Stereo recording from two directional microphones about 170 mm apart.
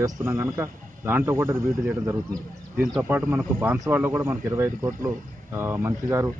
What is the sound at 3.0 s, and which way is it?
Speech, 10° right (ahead or behind).